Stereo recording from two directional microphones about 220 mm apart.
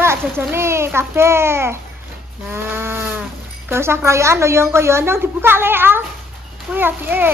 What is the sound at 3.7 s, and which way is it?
A child's voice, 10° right (ahead or behind).